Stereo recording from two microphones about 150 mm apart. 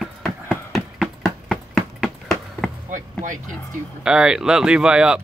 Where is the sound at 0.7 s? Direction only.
Centre (ahead or behind).